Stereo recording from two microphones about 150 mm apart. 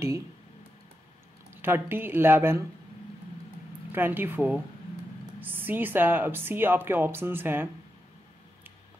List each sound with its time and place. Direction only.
1.5 s speech: 15° right (ahead or behind)
3.9 s speech: 15° right (ahead or behind)